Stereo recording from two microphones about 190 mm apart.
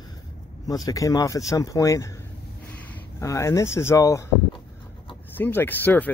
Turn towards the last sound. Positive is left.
turn(degrees=10)  # may be behind; listen again after turning